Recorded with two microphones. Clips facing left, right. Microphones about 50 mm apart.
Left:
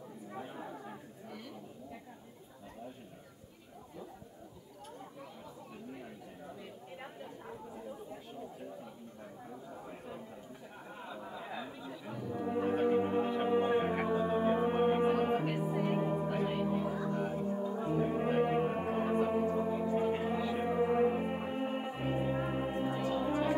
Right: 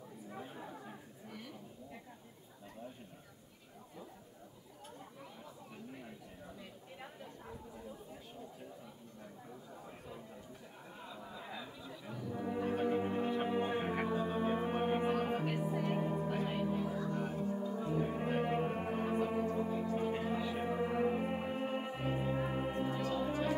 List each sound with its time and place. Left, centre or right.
0.3 s chatter: centre
7.0 s chatter: centre
9.8 s a sound: left
11.1 s music: left